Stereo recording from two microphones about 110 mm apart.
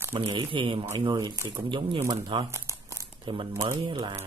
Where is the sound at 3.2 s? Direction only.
55° right (ahead or behind).